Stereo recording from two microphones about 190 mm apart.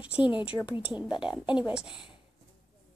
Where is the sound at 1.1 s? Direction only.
25° left (ahead or behind).